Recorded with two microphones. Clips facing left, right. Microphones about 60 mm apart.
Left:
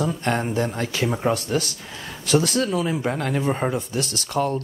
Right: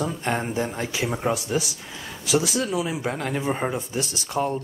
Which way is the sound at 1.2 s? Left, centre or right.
Centre.